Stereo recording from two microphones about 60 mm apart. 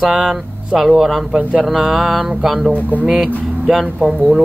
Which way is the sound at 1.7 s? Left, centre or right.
Centre.